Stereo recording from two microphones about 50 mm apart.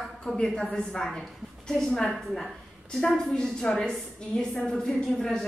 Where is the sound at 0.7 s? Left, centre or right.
Left.